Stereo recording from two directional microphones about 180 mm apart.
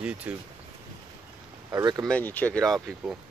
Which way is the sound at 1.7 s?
20° right (ahead or behind).